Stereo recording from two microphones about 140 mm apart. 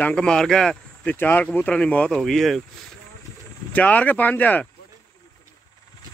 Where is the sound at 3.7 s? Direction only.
10° left (ahead or behind).